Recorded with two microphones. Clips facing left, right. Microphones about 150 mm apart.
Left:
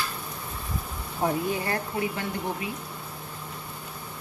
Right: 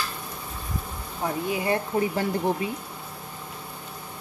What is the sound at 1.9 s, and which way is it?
Speech, 30° right (ahead or behind).